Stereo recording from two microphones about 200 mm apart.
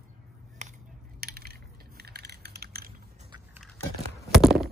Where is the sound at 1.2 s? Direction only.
50° right (ahead or behind).